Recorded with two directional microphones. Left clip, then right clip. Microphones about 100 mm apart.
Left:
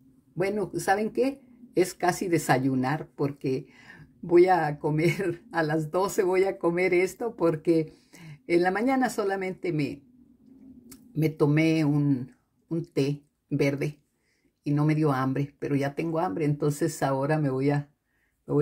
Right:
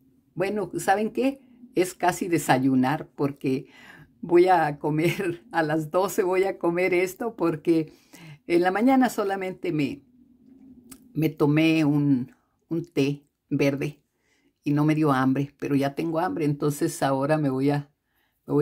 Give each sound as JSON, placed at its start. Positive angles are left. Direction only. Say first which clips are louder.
{"t": 0.4, "sound": "speech", "louder": "right 1 dB", "side_deg": -10}